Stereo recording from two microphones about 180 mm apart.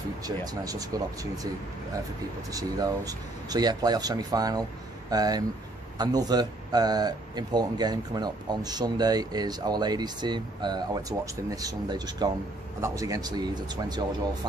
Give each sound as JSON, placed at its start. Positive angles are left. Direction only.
{"t": 0.2, "sound": "speech", "side_deg": -20}
{"t": 2.5, "sound": "speech", "side_deg": -20}